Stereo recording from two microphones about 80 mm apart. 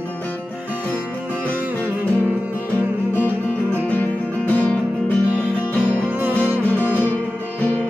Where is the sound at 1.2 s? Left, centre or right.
Right.